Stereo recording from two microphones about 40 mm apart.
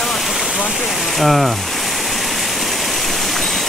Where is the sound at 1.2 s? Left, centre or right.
Centre.